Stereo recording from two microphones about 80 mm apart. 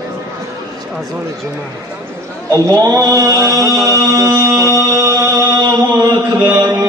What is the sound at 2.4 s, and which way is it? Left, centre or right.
Speech, right.